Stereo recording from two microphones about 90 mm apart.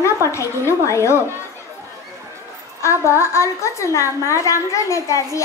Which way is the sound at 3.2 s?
35° left (ahead or behind).